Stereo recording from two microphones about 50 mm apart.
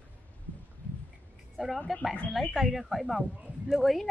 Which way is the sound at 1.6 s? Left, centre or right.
Centre.